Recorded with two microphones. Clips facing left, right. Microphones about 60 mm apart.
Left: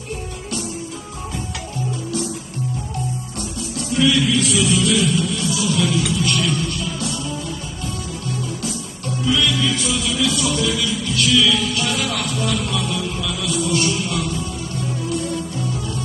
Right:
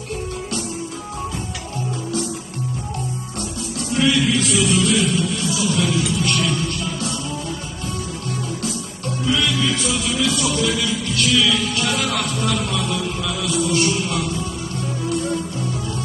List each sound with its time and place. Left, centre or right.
3.9 s music: right
9.3 s music: right